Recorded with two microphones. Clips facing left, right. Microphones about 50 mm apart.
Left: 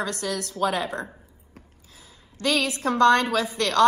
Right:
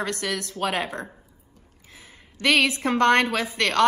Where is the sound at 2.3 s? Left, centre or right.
Right.